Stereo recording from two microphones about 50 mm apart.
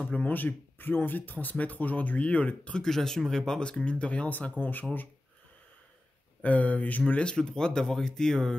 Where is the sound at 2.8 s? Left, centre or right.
Centre; by 4.8 s left.